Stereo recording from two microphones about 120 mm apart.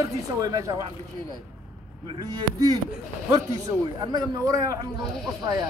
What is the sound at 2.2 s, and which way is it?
Speech, 30° right (ahead or behind).